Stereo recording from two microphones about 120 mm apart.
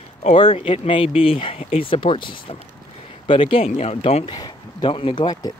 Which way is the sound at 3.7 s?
65° left (ahead or behind).